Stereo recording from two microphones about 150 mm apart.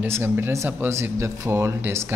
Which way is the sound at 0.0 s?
15° right (ahead or behind).